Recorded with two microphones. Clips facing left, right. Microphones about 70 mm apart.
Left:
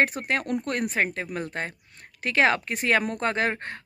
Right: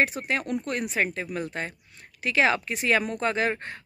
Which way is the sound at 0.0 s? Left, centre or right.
Left.